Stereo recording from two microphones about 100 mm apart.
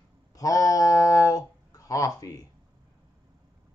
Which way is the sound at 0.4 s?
35° left (ahead or behind).